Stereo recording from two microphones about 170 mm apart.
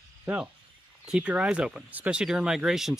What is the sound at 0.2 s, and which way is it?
Speech, 10° right (ahead or behind).